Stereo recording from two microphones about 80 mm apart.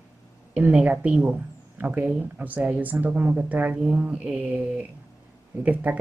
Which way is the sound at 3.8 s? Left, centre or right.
Centre.